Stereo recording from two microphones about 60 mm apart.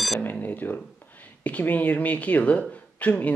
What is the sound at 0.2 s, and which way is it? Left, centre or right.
Speech, left.